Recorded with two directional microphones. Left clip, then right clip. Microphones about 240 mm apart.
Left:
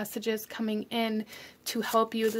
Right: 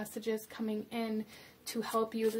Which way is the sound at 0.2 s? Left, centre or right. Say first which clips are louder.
Left 4 dB; left.